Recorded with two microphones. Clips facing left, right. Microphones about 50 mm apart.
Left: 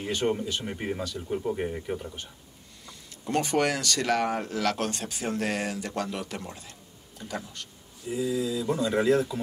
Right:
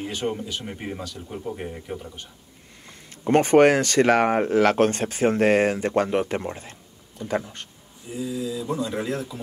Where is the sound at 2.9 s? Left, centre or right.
Right.